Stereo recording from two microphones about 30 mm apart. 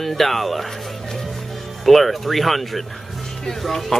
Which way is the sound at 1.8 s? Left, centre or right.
Centre.